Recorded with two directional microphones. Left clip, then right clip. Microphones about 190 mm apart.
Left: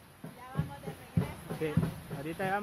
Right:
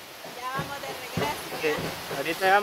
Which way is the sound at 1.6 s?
Centre (ahead or behind).